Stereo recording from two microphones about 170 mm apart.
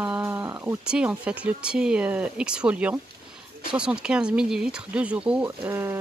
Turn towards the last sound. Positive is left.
turn(degrees=-15)  # may be behind; listen again after turning